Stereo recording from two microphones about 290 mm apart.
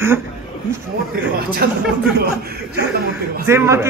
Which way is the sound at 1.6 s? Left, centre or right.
Right.